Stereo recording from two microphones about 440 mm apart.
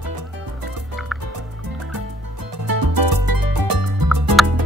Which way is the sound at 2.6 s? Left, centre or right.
Right.